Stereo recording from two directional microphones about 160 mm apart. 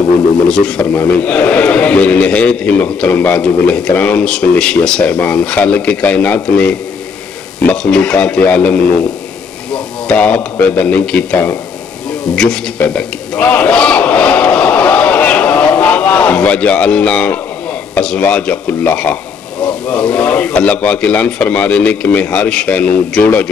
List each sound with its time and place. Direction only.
0.5 s a man's voice: 5° left (ahead or behind)
10.0 s a man's voice: 10° left (ahead or behind)
12.4 s a sound: 5° left (ahead or behind)
17.9 s a man's voice: 5° left (ahead or behind)